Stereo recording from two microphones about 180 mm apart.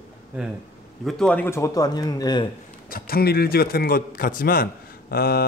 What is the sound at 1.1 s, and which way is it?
Speech, 5° left (ahead or behind).